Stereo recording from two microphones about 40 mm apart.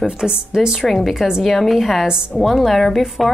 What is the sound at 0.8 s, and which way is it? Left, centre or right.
Speech, centre.